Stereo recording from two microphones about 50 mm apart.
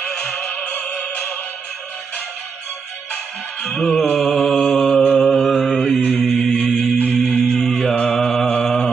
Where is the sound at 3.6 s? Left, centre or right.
Centre.